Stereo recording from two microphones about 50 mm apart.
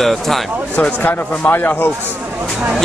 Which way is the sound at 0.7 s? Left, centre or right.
Left.